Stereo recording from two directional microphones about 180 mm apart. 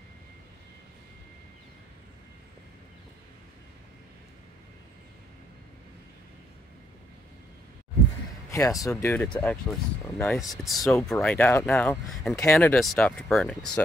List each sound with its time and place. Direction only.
8.5 s speech: 15° left (ahead or behind); by 12.4 s centre (ahead or behind)
12.4 s speech: 10° left (ahead or behind)